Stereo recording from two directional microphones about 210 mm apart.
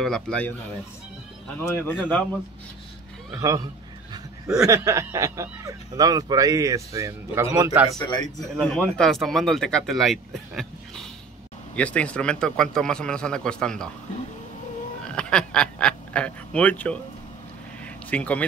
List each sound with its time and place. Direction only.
0.0 s speech: 5° left (ahead or behind)
1.6 s speech: 10° left (ahead or behind)
3.3 s speech: 15° right (ahead or behind)
4.6 s speech: 15° right (ahead or behind)
8.0 s a man's voice: 20° left (ahead or behind)
8.5 s speech: 5° left (ahead or behind)
15.0 s duck: 5° left (ahead or behind)
17.8 s vehicle: 5° left (ahead or behind)